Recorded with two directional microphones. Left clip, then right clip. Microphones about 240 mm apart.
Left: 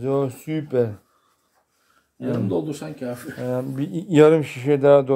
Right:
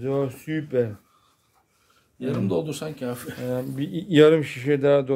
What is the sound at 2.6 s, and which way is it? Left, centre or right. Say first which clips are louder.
Speech: left 1 dB; right.